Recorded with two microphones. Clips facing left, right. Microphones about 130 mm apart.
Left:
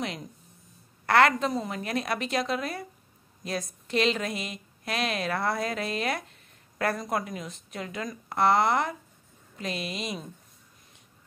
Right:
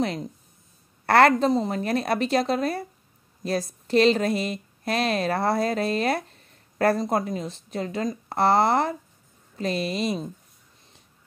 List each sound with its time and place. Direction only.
0.0 s a woman's voice: 35° right (ahead or behind)